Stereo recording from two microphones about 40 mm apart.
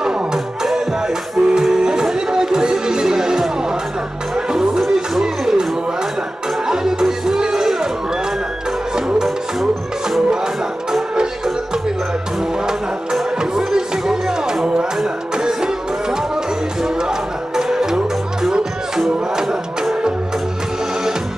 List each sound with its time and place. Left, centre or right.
0.0 s music: centre
4.5 s music: centre
6.7 s music: centre
10.9 s music: centre
17.6 s music: centre